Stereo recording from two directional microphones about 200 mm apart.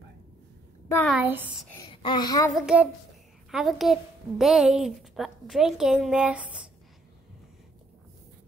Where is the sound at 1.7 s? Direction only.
20° left (ahead or behind).